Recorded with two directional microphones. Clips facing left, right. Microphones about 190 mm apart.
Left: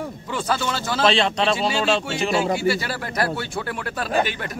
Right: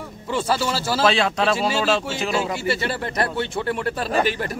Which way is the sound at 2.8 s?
25° right (ahead or behind).